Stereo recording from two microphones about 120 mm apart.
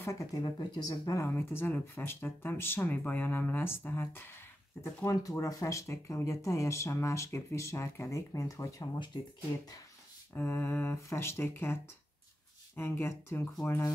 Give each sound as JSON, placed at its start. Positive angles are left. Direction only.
{"t": 0.0, "sound": "speech", "side_deg": 25}
{"t": 10.3, "sound": "speech", "side_deg": 15}